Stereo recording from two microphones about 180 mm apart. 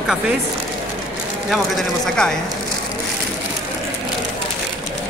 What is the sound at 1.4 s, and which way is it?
Speech, centre (ahead or behind).